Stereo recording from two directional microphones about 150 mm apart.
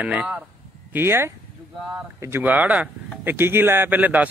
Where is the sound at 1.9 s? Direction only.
20° right (ahead or behind).